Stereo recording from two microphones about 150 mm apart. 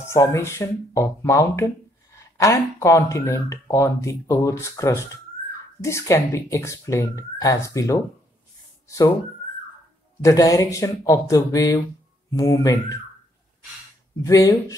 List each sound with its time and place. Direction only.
0.1 s speech: 20° left (ahead or behind)
8.8 s a sound: 25° left (ahead or behind)
10.2 s speech: 20° left (ahead or behind)
14.2 s speech: 20° left (ahead or behind)